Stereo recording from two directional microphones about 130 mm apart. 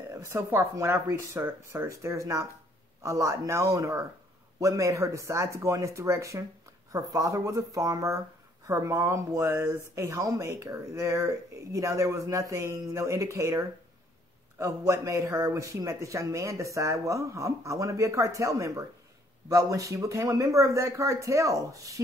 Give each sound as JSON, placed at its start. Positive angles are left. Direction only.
{"t": 0.1, "sound": "speech", "side_deg": -20}